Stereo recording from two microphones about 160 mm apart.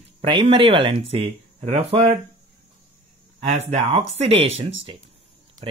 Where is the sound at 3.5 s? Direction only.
40° right (ahead or behind).